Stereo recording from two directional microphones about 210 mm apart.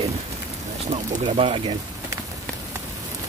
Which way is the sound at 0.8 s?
30° right (ahead or behind).